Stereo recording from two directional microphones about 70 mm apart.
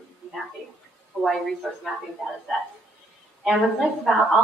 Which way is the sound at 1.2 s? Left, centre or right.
Centre.